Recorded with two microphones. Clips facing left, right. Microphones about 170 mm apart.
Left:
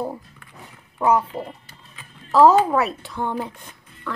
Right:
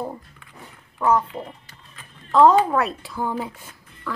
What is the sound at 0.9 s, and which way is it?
Speech, 15° left (ahead or behind).